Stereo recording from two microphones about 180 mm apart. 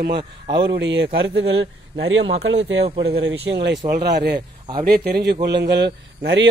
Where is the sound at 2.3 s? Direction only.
70° right (ahead or behind).